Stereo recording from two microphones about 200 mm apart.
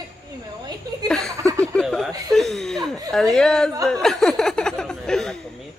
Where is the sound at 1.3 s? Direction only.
15° right (ahead or behind).